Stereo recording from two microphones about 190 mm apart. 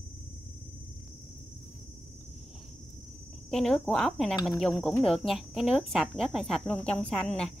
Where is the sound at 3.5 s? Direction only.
Centre (ahead or behind).